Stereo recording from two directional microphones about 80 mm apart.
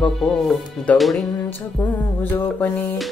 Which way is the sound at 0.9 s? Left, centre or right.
Centre.